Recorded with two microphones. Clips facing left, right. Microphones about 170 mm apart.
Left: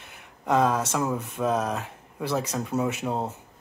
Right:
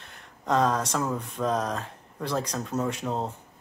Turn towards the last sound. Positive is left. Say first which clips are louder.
# left 2 dB
turn(degrees=10)  # may be behind; listen again after turning